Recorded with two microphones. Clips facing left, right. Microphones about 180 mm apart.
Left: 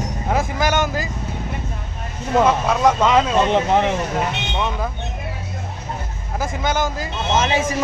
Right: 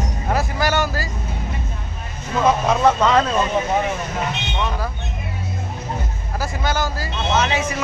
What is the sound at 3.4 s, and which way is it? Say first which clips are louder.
Speech: left 3 dB; 75° left (ahead or behind).